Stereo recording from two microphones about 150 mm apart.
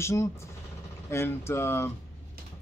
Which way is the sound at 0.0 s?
20° left (ahead or behind).